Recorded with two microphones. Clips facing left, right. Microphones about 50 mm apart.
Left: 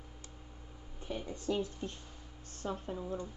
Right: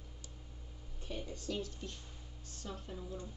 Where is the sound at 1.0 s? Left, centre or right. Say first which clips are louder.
Left 5 dB; left.